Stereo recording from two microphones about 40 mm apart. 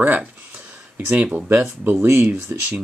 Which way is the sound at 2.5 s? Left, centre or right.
Right.